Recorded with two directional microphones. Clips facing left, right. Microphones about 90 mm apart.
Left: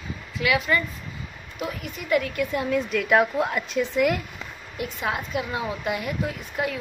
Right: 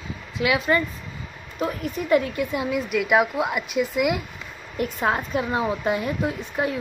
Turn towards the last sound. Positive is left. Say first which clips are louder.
# right 3 dB
turn(degrees=-25)  # may be behind; listen again after turning